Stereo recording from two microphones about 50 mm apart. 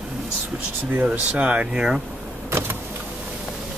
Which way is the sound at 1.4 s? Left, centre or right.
Right.